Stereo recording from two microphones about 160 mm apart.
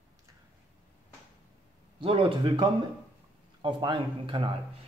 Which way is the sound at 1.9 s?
35° right (ahead or behind).